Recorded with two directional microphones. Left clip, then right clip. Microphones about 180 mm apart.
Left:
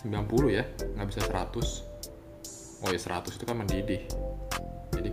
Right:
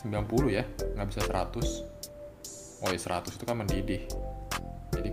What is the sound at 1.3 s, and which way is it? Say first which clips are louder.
Speech: right 1 dB; 15° right (ahead or behind).